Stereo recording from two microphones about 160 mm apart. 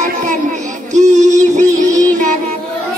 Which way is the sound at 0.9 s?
50° right (ahead or behind).